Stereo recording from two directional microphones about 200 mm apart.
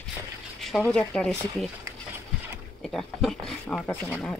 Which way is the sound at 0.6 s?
Centre (ahead or behind).